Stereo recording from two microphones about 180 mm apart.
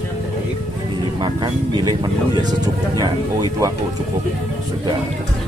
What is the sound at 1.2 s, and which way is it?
Vehicle, 25° right (ahead or behind).